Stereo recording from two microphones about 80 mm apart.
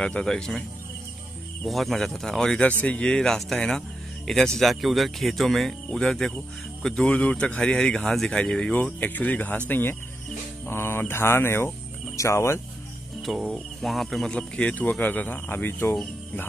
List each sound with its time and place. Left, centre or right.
0.0 s speech: centre
1.7 s speech: centre; by 12.5 s left
13.2 s speech: centre
14.3 s speech: centre